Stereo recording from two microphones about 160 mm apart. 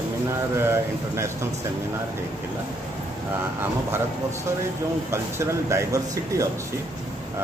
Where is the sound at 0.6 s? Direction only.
15° right (ahead or behind).